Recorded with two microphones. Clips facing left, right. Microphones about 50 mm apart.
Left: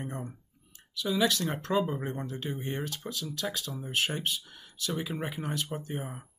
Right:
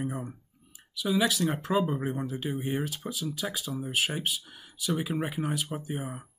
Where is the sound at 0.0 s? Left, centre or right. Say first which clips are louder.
Right 4 dB; centre.